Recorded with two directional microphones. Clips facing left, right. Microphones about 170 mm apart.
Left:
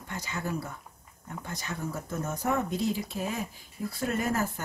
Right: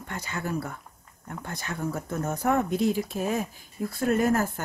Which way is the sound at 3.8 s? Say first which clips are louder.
Right 6 dB; 50° right (ahead or behind).